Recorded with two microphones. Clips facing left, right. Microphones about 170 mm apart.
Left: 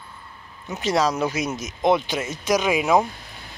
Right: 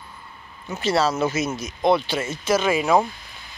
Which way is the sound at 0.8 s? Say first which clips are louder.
Right 1 dB; 15° left (ahead or behind).